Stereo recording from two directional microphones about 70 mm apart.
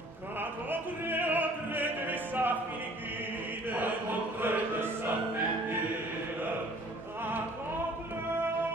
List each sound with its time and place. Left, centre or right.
0.4 s opera: right
3.6 s chant: right
4.4 s music: right